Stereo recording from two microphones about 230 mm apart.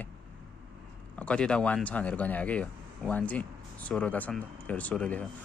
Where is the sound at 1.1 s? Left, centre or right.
Centre.